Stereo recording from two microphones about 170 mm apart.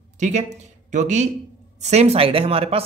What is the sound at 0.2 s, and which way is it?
Speech, 45° right (ahead or behind).